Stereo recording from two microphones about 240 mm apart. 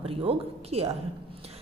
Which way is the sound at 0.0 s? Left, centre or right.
Right.